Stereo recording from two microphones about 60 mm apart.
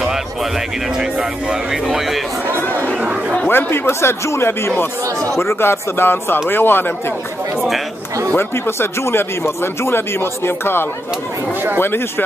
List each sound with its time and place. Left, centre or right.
1.5 s speech: centre
3.0 s chatter: centre
3.4 s speech: left
8.4 s speech: left